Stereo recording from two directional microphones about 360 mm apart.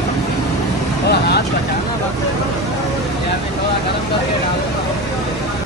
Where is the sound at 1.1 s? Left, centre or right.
Left.